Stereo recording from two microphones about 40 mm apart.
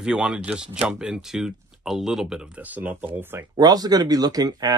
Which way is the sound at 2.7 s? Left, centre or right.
Right.